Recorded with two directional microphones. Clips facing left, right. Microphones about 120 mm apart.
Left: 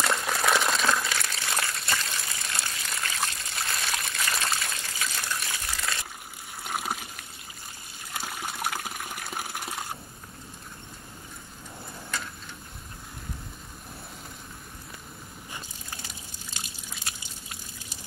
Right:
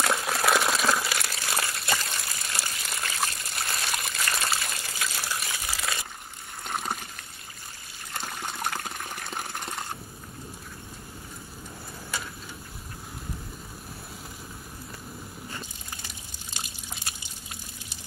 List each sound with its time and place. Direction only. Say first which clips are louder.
0.0 s crumpling: right 1 dB; 5° right (ahead or behind)
6.6 s water: even; 5° left (ahead or behind)
8.1 s water: even; 5° left (ahead or behind)
12.1 s vehicle: even; 5° right (ahead or behind)
16.5 s drip: right 3 dB; 25° right (ahead or behind)